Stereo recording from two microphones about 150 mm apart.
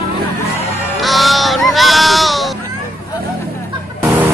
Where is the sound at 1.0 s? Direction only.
Centre (ahead or behind).